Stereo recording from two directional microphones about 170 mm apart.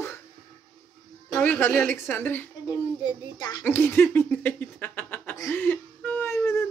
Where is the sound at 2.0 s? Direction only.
10° left (ahead or behind).